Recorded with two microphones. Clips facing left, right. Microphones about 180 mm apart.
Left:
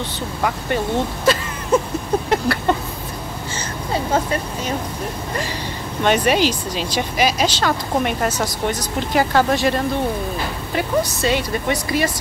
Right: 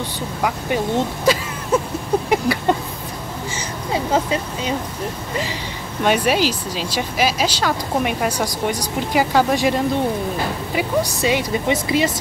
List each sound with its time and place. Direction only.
0.4 s speech: 10° right (ahead or behind)
2.2 s a sound: 10° right (ahead or behind)
6.0 s speech: 5° right (ahead or behind)